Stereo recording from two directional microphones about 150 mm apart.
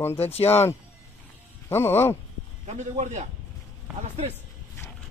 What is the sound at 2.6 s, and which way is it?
Speech, 50° right (ahead or behind).